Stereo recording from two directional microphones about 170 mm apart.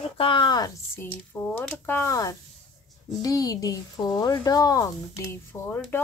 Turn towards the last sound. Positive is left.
turn(degrees=10)  # may be behind; listen again after turning